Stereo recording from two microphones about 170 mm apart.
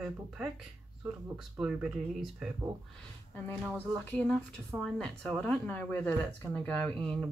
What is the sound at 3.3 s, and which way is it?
Speech, 10° left (ahead or behind).